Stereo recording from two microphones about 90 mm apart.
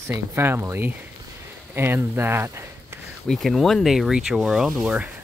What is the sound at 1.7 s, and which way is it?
Speech, 25° right (ahead or behind).